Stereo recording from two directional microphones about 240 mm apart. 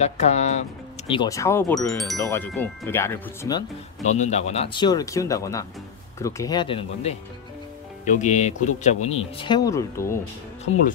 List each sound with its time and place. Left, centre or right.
0.0 s speech: left
4.0 s speech: left; by 10.1 s centre